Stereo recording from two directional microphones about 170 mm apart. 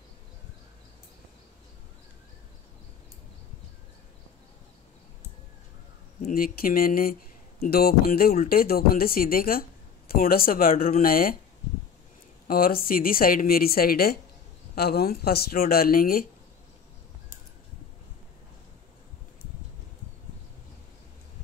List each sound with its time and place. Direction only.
6.2 s speech: 60° left (ahead or behind)
12.4 s speech: 60° left (ahead or behind)